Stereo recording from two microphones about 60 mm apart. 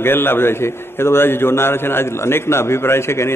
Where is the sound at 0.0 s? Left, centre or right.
Left.